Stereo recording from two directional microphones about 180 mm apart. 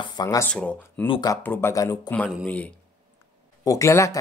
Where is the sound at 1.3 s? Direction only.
10° left (ahead or behind).